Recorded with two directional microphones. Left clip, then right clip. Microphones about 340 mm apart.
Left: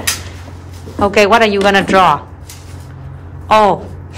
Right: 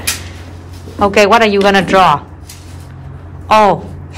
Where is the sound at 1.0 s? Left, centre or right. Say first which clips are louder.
Right 1 dB; centre.